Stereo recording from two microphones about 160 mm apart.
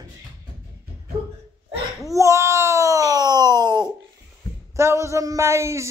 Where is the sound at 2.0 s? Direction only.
20° right (ahead or behind).